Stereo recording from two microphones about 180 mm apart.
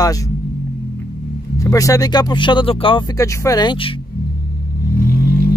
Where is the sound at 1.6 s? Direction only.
20° left (ahead or behind).